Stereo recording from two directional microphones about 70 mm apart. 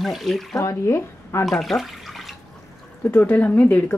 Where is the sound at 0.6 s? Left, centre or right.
Left.